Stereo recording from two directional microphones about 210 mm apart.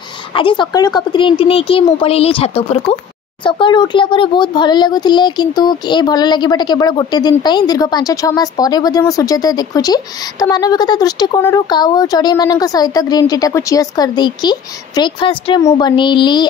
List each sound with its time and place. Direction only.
0.3 s a child's voice: 25° left (ahead or behind)